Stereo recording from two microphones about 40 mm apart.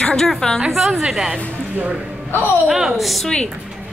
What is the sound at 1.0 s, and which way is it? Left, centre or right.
Speech, centre.